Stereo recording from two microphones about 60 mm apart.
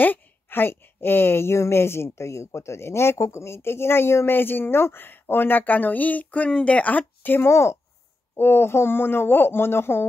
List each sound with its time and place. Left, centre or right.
0.0 s a woman's voice: left